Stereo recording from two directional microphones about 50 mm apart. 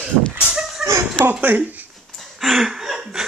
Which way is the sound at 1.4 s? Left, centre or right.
Right.